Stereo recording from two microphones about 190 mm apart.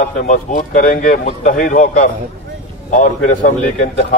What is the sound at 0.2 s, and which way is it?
A man's voice, 45° left (ahead or behind).